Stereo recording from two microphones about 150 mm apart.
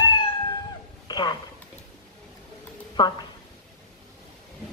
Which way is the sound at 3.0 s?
30° left (ahead or behind).